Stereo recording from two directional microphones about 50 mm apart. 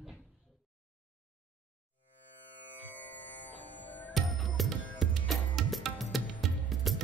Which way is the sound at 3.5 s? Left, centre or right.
Left.